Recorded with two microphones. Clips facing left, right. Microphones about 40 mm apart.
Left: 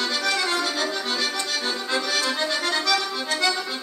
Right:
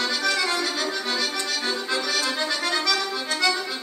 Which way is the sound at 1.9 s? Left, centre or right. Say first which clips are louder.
Left 3 dB; left.